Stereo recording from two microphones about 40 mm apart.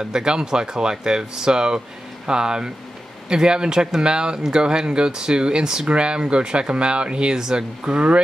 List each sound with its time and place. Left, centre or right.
0.0 s speech: centre